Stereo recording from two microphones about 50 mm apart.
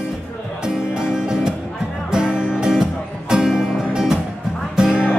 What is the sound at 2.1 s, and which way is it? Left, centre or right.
Music, centre.